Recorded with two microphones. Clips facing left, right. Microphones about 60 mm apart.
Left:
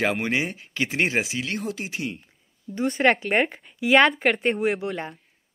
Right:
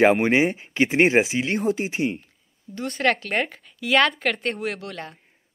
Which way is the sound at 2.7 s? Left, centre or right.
Centre.